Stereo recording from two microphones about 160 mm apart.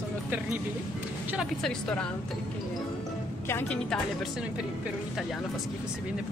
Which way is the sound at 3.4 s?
10° left (ahead or behind).